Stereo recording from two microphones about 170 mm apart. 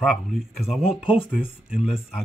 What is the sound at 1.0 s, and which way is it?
Speech, 30° left (ahead or behind).